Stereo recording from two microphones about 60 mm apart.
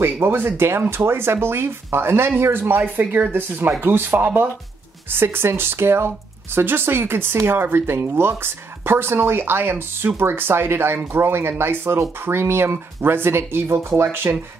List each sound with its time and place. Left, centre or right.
0.0 s speech: right